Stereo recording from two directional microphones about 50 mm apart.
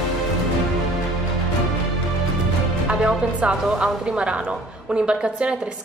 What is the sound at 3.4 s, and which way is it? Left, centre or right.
A woman's voice, centre.